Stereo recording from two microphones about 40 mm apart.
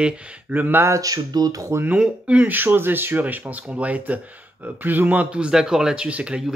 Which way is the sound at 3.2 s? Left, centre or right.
Right.